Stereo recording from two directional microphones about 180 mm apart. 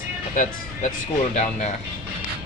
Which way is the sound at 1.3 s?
40° left (ahead or behind).